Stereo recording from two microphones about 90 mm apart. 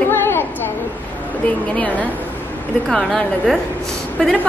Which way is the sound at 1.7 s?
15° left (ahead or behind).